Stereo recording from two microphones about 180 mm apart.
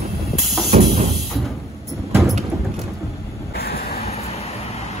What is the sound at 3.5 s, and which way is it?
Vehicle, 60° left (ahead or behind).